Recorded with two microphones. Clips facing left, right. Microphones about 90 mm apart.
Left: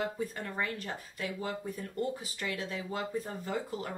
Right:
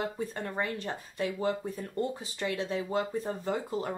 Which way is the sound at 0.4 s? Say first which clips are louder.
Right 3 dB; 30° right (ahead or behind).